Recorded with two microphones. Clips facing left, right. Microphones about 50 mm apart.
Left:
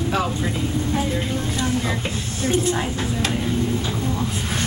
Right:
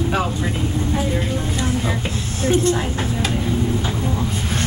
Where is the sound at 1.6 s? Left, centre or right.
Centre.